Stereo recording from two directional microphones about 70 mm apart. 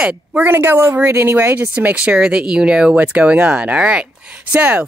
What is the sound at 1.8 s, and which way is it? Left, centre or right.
Speech, right.